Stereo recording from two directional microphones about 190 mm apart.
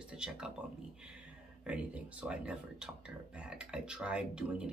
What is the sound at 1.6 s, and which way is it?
Speech, 5° right (ahead or behind).